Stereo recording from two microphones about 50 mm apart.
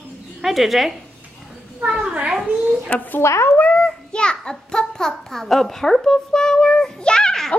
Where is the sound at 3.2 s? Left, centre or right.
Left.